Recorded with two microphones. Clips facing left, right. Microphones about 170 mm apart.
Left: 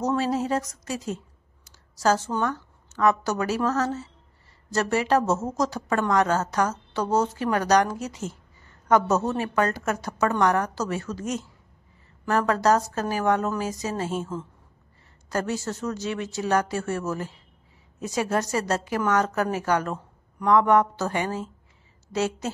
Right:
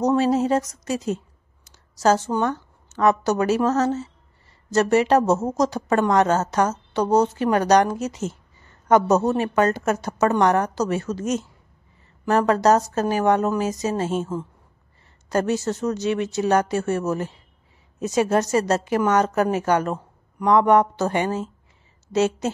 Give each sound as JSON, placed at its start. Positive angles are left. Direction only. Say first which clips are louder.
{"t": 0.0, "sound": "a woman's voice", "louder": "right 6 dB", "side_deg": -20}